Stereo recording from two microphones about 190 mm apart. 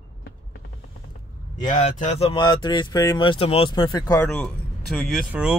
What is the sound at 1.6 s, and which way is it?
Speech, 35° left (ahead or behind).